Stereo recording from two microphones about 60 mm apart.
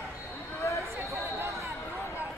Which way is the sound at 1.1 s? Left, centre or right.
Right.